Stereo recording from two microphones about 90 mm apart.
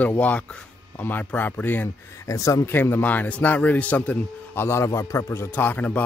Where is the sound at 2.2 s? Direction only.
35° left (ahead or behind).